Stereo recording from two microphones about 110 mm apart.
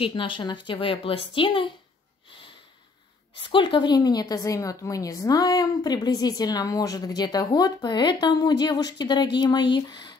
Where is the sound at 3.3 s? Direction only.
50° left (ahead or behind).